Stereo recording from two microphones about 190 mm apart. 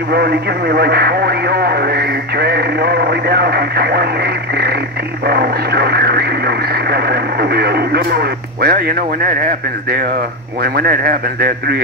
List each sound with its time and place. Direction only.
0.1 s speech: 55° right (ahead or behind)
10.6 s speech: 50° right (ahead or behind)